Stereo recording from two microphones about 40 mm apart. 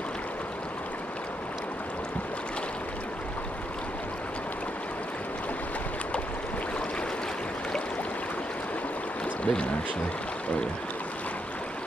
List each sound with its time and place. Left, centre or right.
9.4 s speech: left